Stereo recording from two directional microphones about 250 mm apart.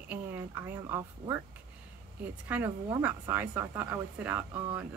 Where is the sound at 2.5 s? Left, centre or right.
Centre.